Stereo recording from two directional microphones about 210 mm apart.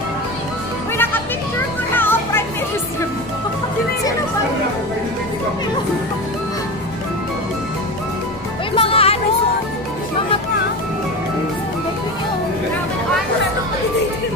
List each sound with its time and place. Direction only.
2.0 s music: 10° left (ahead or behind)
8.7 s music: 25° left (ahead or behind)